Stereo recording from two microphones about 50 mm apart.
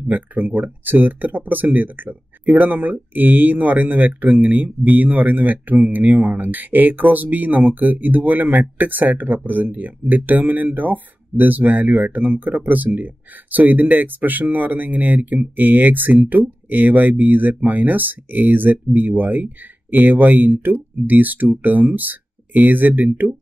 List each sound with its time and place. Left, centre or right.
0.1 s speech: right